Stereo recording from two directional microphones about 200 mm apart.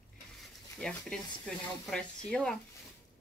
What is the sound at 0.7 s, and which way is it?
Speech, 5° left (ahead or behind).